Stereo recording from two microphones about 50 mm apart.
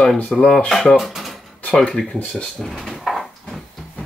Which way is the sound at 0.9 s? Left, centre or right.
Centre.